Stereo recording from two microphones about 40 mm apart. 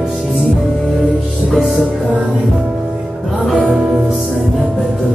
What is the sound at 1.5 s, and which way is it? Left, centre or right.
Music, centre.